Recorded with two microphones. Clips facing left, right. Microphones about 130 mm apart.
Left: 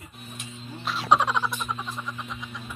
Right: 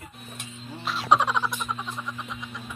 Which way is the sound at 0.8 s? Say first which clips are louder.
Even; centre (ahead or behind).